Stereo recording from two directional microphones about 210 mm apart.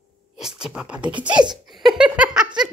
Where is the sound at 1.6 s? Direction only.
Centre (ahead or behind).